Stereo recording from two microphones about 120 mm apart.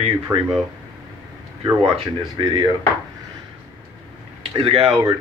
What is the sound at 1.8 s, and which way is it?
Speech, 55° right (ahead or behind).